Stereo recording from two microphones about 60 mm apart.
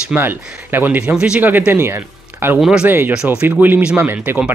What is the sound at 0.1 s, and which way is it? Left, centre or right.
Speech, right.